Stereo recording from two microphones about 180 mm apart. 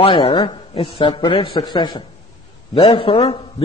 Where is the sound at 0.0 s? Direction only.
30° left (ahead or behind).